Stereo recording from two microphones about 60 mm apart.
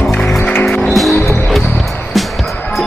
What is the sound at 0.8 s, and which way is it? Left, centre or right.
Music, centre.